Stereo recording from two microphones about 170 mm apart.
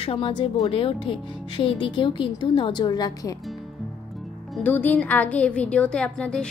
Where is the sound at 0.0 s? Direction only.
30° left (ahead or behind).